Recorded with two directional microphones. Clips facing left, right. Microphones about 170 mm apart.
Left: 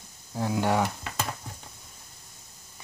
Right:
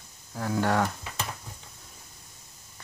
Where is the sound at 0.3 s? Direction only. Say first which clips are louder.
Left 1 dB; 20° left (ahead or behind).